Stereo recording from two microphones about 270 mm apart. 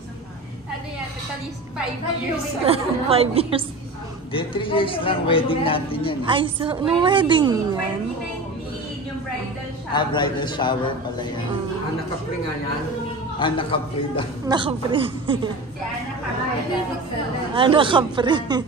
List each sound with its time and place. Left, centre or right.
2.6 s a woman's voice: right
4.3 s a man's voice: centre
6.2 s a woman's voice: centre
9.9 s a man's voice: centre
13.4 s a man's voice: centre
14.5 s a woman's voice: centre
17.6 s a woman's voice: centre